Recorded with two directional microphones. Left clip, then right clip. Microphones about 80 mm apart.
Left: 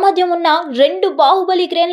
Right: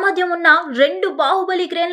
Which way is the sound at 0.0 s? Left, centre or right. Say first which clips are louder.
Left 3 dB; centre.